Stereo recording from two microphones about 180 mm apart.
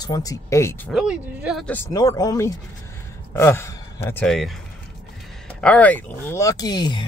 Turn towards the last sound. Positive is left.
turn(degrees=25)  # may be behind; listen again after turning